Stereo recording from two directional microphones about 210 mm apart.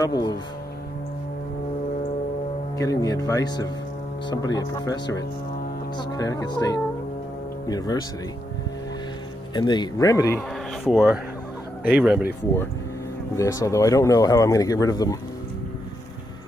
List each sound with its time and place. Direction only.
0.0 s speech: 20° left (ahead or behind)
2.8 s speech: 15° left (ahead or behind)
9.5 s speech: 20° left (ahead or behind)
10.8 s speech: 5° right (ahead or behind)
13.4 s speech: 15° left (ahead or behind)